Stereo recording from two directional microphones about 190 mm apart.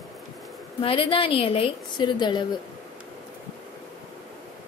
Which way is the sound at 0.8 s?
30° left (ahead or behind).